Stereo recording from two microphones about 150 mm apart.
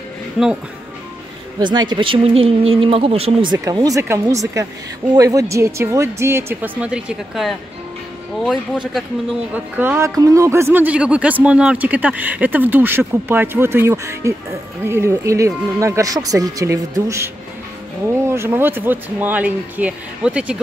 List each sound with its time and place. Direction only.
1.6 s speech: 30° right (ahead or behind)
3.5 s speech: 20° right (ahead or behind); by 9.0 s centre (ahead or behind)
9.5 s speech: 15° right (ahead or behind)